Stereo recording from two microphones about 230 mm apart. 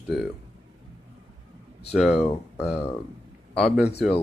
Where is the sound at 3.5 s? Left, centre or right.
Centre.